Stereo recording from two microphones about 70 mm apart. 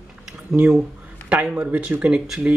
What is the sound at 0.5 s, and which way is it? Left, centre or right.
Speech, centre.